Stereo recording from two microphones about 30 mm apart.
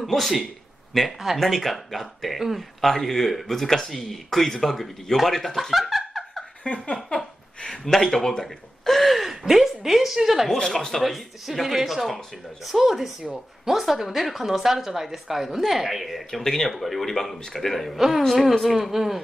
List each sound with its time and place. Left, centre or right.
0.0 s speech: centre
5.7 s a sound: centre
6.7 s a sound: left
7.2 s a sound: centre
7.8 s speech: centre
8.9 s speech: centre
10.5 s a woman's voice: centre
16.3 s speech: centre
17.9 s a woman's voice: centre
18.3 s a woman's voice: centre